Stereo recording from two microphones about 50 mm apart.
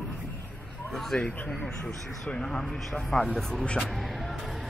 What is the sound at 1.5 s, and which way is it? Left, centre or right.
A man's voice, centre.